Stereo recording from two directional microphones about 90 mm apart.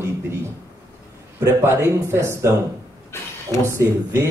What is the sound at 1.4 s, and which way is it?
Speech, 30° right (ahead or behind).